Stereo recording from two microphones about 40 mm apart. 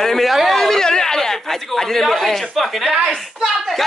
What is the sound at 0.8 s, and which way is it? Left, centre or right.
A man's voice, centre.